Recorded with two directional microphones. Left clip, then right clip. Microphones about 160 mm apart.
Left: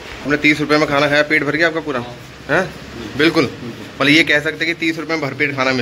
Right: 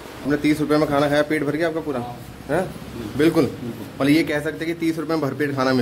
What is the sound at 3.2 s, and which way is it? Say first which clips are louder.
A man's voice: left 4 dB; 15° right (ahead or behind).